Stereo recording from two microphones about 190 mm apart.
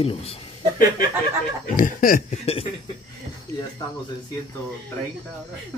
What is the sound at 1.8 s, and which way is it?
Chuckle, 45° left (ahead or behind).